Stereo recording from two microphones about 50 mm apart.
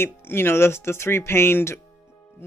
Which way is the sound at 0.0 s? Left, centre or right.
Left.